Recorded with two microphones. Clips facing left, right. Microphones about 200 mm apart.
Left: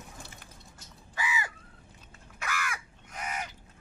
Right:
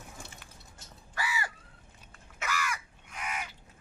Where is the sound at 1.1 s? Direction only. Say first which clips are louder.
Left 1 dB; 20° left (ahead or behind).